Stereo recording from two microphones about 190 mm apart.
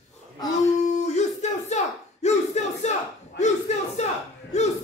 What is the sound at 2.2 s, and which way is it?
Battle cry, 35° left (ahead or behind).